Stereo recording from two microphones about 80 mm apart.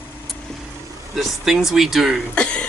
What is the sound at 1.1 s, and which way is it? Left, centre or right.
Speech, centre.